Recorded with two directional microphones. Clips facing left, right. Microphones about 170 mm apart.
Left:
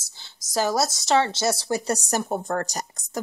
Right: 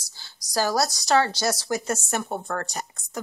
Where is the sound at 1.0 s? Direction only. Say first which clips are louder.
Left 1 dB; 20° left (ahead or behind).